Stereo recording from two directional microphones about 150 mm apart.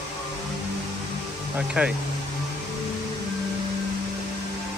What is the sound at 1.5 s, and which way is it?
Speech, 5° right (ahead or behind).